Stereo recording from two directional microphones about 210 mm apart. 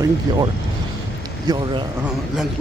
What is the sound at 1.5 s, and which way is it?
Speech, 20° right (ahead or behind).